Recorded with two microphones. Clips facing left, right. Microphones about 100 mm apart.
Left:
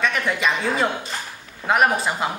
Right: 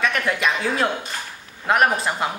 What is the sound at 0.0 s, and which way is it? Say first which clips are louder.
Speech: even; centre (ahead or behind).